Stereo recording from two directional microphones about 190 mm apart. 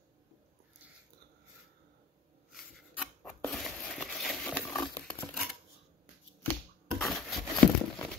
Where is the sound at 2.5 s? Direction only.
Centre (ahead or behind).